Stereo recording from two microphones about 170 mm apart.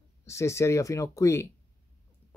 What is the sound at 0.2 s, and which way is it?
Speech, 15° left (ahead or behind).